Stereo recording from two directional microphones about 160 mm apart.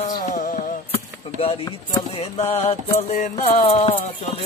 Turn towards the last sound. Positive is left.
turn(degrees=40)  # may be behind; listen again after turning